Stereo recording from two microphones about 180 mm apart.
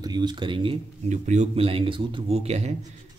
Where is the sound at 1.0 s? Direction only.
40° right (ahead or behind).